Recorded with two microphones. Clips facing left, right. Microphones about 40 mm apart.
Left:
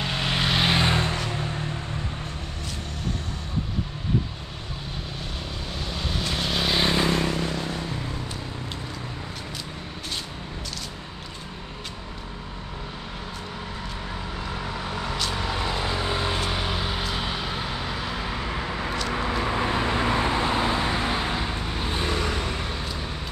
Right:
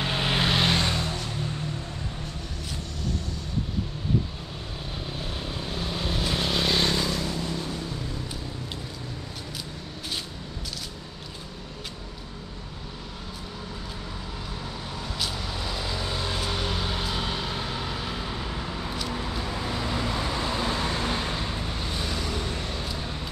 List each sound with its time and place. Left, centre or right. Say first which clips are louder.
0.0 s vehicle: even; centre
0.8 s vehicle: left 5 dB; left
1.1 s a sound: left 3 dB; left
5.7 s vehicle: right 1 dB; centre
7.0 s vehicle: left 5 dB; left
14.6 s vehicle: left 5 dB; left
15.7 s vehicle: left 5 dB; left
19.0 s vehicle: left 5 dB; left
22.6 s vehicle: left 2 dB; left